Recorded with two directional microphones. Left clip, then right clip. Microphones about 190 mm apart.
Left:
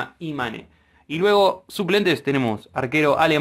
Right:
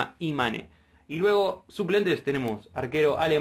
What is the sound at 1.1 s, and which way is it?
Speech, 45° left (ahead or behind).